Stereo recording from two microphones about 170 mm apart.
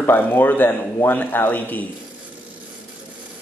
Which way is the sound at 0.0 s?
10° left (ahead or behind).